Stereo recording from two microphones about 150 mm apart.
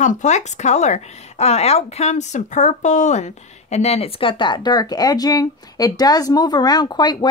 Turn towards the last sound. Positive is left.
turn(degrees=30)  # may be behind; listen again after turning